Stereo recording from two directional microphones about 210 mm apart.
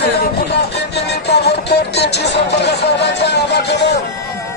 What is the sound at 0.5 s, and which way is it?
Music, 50° left (ahead or behind).